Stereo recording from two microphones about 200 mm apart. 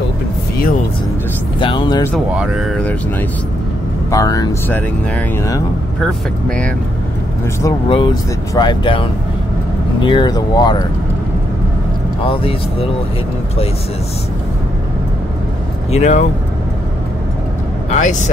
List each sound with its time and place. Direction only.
1.6 s speech: 25° left (ahead or behind)
2.1 s speech: centre (ahead or behind)
7.6 s speech: 20° left (ahead or behind)
15.9 s speech: 35° left (ahead or behind)
17.8 s speech: 35° left (ahead or behind)